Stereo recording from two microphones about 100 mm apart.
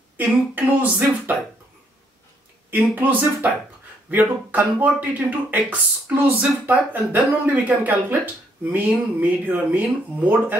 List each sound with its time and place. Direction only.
0.2 s speech: 15° right (ahead or behind)
2.7 s speech: 20° right (ahead or behind)